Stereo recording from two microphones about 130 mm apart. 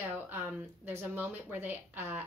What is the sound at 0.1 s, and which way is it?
Speech, 15° right (ahead or behind).